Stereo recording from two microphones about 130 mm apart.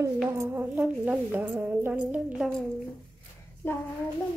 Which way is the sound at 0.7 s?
5° right (ahead or behind).